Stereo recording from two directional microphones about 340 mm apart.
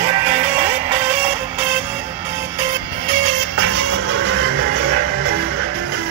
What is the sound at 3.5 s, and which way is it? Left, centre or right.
Music, right.